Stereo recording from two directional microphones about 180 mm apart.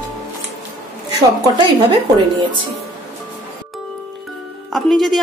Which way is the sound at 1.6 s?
25° right (ahead or behind).